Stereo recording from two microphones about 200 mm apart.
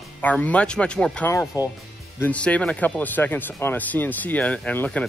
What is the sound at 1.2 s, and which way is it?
Speech, 15° left (ahead or behind).